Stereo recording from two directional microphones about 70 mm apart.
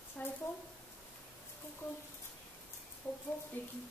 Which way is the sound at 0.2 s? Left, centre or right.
Left.